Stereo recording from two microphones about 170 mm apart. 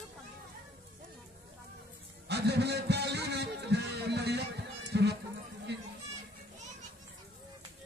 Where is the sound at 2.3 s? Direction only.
80° right.